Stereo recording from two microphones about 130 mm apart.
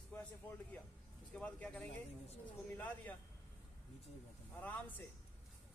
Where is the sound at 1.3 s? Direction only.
10° left (ahead or behind).